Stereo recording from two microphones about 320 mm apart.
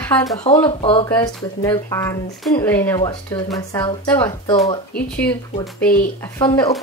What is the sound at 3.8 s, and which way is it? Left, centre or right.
Speech, centre.